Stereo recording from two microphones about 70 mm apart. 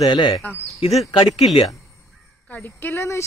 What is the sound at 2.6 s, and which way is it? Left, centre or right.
Speech, left.